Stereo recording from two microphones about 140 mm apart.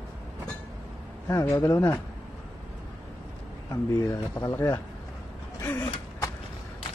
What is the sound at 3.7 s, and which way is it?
Speech, 25° left (ahead or behind).